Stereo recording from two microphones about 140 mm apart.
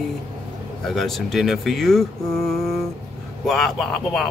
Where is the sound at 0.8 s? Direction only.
Centre (ahead or behind).